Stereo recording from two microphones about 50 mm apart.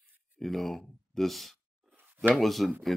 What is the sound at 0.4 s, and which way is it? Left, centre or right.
Speech, centre.